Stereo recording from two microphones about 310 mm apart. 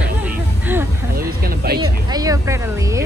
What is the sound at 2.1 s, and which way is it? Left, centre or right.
Speech, centre.